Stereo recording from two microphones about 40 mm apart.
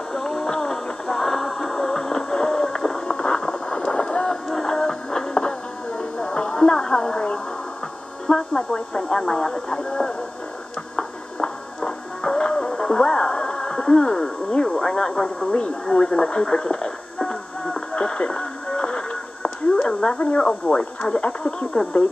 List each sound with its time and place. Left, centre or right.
0.1 s music: centre
3.4 s boat: centre
4.6 s music: centre
8.3 s speech: centre
11.0 s music: centre
15.5 s a sound: left
20.2 s speech: left